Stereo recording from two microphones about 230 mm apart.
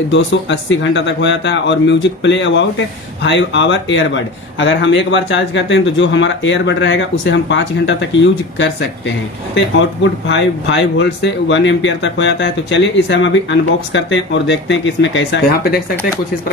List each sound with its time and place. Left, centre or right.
0.1 s speech: left